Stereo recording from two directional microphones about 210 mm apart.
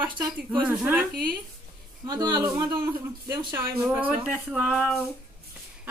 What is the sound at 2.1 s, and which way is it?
Speech, 20° right (ahead or behind).